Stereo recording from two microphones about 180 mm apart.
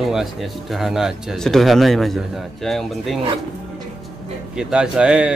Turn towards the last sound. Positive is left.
turn(degrees=-5)  # may be behind; listen again after turning